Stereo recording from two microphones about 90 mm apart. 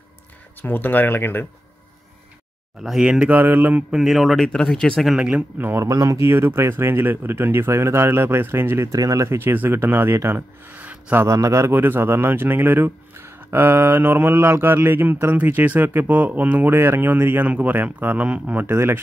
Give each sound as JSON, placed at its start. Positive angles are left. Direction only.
{"t": 0.6, "sound": "speech", "side_deg": 20}
{"t": 2.8, "sound": "speech", "side_deg": -5}
{"t": 3.3, "sound": "speech", "side_deg": -20}
{"t": 3.9, "sound": "speech", "side_deg": -5}
{"t": 5.0, "sound": "speech", "side_deg": -10}
{"t": 5.9, "sound": "speech", "side_deg": -35}
{"t": 11.2, "sound": "speech", "side_deg": -35}